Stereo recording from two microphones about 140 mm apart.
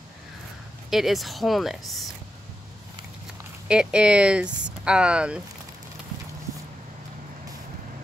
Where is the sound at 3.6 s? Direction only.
5° right (ahead or behind).